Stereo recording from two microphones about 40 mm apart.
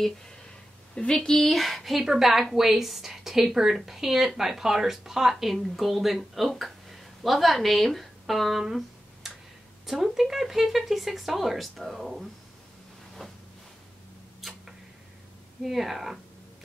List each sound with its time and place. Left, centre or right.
0.9 s a woman's voice: centre
1.4 s speech: centre
14.4 s tick-tock: centre
15.6 s speech: centre